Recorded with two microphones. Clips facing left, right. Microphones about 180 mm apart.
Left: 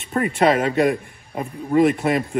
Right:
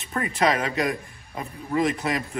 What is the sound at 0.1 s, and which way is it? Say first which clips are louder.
Speech: left 6 dB; 35° left (ahead or behind).